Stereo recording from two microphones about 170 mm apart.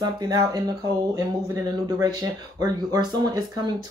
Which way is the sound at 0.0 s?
25° right (ahead or behind).